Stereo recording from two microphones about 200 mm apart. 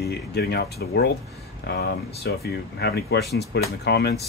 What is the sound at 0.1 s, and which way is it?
Speech, 55° left (ahead or behind).